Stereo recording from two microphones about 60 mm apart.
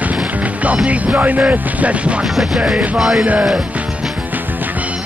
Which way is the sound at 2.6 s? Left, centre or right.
Right.